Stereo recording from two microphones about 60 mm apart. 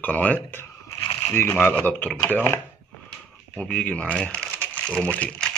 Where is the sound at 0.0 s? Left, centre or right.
Left.